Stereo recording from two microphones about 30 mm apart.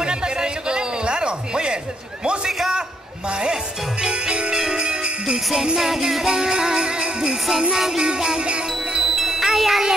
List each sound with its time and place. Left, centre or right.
0.0 s a sound: right
3.3 s speech: right
4.0 s jingle bell: right
5.8 s music: centre
6.9 s jingle bell: right
7.7 s music: centre
8.4 s music: right
9.3 s music: centre